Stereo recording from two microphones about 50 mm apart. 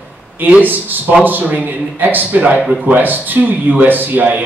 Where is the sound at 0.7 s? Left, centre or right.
Right.